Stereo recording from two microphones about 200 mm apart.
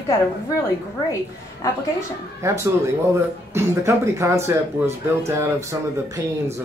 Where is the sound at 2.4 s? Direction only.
15° right (ahead or behind).